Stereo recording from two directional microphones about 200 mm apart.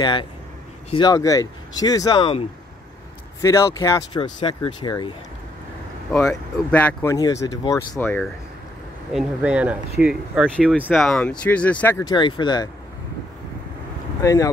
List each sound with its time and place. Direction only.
0.0 s speech: 25° left (ahead or behind)
6.2 s speech: 10° left (ahead or behind)
9.1 s speech: 5° right (ahead or behind)
12.0 s speech: 20° left (ahead or behind)
14.2 s speech: 15° left (ahead or behind)